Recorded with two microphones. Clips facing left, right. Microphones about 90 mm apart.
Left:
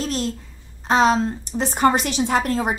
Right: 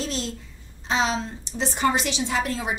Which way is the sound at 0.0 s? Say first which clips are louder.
Left 5 dB; 50° left (ahead or behind).